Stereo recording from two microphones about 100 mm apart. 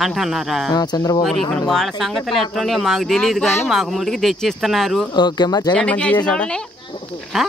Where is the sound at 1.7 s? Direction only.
Centre (ahead or behind).